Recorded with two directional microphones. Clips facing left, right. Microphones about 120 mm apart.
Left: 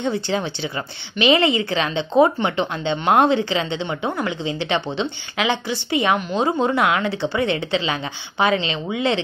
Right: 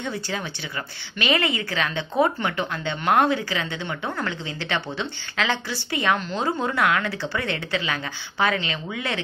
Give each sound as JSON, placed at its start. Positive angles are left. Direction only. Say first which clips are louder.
{"t": 0.0, "sound": "speech", "louder": "left 7 dB", "side_deg": 25}